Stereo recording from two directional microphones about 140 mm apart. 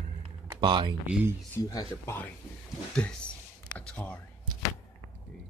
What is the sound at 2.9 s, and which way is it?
Speech, 5° left (ahead or behind).